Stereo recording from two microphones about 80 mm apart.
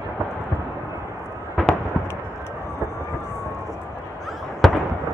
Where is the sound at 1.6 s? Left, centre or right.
Centre.